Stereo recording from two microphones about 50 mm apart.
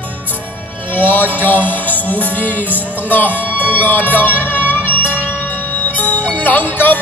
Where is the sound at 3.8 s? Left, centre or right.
Left.